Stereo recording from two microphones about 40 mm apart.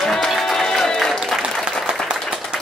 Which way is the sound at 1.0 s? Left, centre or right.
Centre.